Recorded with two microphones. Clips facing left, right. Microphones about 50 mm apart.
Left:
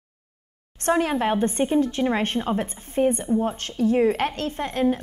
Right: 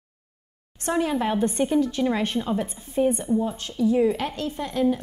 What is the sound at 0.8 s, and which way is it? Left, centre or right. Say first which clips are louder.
A woman's voice: left 2 dB; left.